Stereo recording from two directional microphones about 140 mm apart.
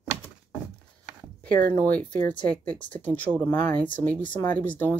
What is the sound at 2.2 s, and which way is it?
Speech, 10° left (ahead or behind).